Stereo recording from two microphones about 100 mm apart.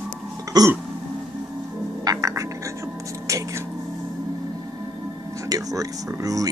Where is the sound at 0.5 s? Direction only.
40° right (ahead or behind).